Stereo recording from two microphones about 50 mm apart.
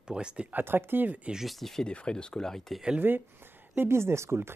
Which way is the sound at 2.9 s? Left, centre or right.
Right.